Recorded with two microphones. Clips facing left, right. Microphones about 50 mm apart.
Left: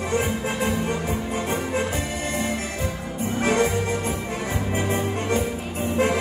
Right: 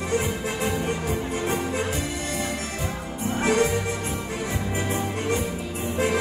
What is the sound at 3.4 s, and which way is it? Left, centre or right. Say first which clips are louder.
Music: even; left.